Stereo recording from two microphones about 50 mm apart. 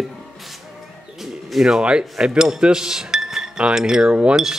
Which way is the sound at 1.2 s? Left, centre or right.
Centre.